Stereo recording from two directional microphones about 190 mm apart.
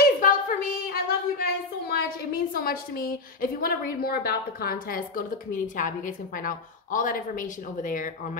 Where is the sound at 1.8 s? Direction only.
50° left (ahead or behind).